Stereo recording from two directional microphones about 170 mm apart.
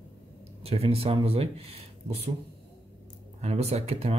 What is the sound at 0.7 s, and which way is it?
Speech, 35° right (ahead or behind).